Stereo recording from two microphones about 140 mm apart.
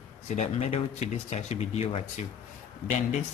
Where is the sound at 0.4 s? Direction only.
50° left (ahead or behind).